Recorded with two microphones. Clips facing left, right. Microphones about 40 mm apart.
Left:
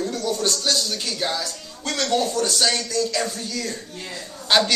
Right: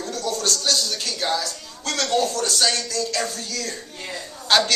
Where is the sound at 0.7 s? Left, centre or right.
Centre.